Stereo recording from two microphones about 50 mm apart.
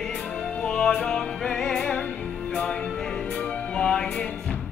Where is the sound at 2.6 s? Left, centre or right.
Left.